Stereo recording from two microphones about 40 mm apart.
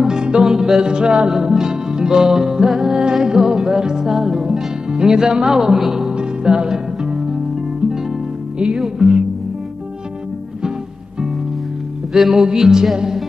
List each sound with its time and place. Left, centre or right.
0.0 s music: centre
0.5 s music: centre
0.8 s music: right
4.1 s music: centre
4.9 s music: centre
6.1 s music: right
8.7 s music: centre
12.1 s music: centre